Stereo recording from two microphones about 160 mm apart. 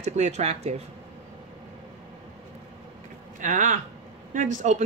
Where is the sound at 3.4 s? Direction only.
50° right (ahead or behind).